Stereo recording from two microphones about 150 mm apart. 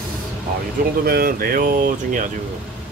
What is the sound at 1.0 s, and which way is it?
Speech, 90° right.